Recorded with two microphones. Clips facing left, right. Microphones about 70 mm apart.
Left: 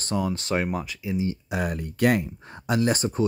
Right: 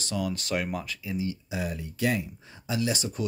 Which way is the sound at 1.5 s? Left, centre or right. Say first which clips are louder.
Left 5 dB; left.